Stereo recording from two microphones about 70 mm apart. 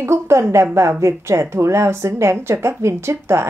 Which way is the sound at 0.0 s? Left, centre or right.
Right.